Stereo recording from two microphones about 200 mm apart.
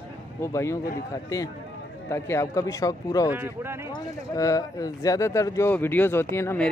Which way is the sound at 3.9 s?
15° left (ahead or behind).